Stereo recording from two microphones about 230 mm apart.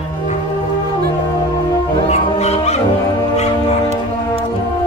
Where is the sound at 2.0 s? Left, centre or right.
Left.